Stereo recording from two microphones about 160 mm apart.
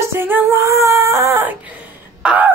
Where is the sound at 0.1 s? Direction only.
15° right (ahead or behind).